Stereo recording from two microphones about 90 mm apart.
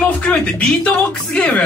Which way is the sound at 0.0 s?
10° left (ahead or behind).